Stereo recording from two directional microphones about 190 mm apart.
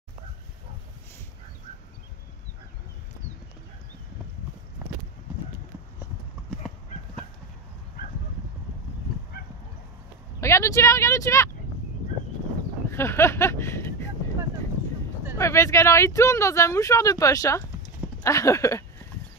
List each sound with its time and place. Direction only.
10.4 s speech: 15° left (ahead or behind)
12.9 s speech: 15° left (ahead or behind)
15.3 s speech: 15° left (ahead or behind)